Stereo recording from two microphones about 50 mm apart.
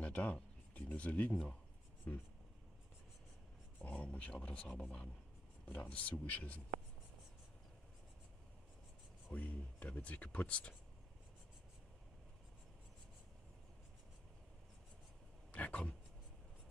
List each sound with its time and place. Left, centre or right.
0.0 s speech: left
3.8 s speech: left
9.3 s speech: left
15.5 s speech: left